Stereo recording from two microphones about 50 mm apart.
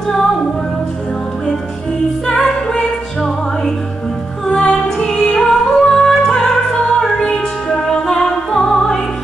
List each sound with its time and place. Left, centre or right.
2.3 s music: centre
4.5 s music: centre
4.7 s music: centre